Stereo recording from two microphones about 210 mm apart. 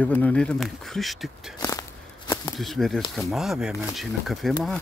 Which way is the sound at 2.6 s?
Centre (ahead or behind).